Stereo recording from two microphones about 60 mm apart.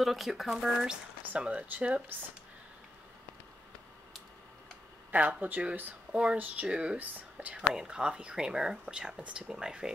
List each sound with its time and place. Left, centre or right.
0.0 s speech: centre
1.4 s speech: right
5.1 s speech: right
7.5 s speech: centre
9.1 s speech: right
9.5 s speech: centre